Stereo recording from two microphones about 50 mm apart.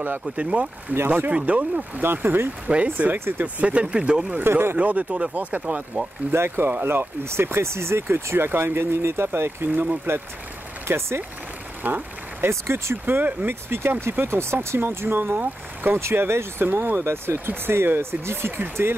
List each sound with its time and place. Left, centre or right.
0.4 s speech: right
0.9 s speech: right
1.3 s speech: right
2.0 s speech: right
3.6 s speech: right
4.4 s speech: right
4.7 s speech: right
6.3 s speech: right
10.9 s speech: right
11.8 s a sound: right
12.4 s speech: right
13.0 s speech: right
14.8 s speech: right
16.0 s speech: right